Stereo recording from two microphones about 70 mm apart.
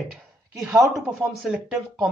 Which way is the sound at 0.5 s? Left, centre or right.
Right.